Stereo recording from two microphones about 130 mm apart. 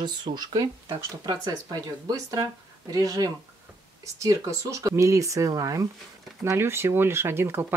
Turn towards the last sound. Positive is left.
turn(degrees=-15)  # may be behind; listen again after turning